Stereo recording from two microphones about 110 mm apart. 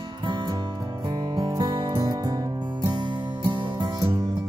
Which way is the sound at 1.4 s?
35° right (ahead or behind).